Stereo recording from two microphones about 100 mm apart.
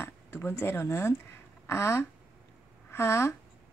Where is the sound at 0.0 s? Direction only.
20° left (ahead or behind).